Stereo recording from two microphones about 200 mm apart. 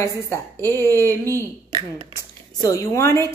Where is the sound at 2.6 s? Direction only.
15° left (ahead or behind).